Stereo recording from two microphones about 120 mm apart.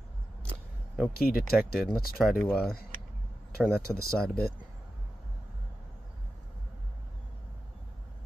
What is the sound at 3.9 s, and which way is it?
Speech, 25° right (ahead or behind).